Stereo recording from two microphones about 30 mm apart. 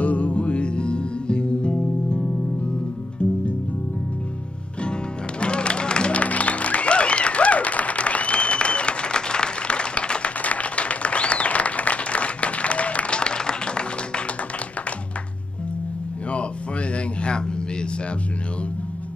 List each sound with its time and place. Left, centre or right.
0.0 s music: left
5.4 s music: left
6.1 s music: left
10.4 s applause: left
13.2 s music: left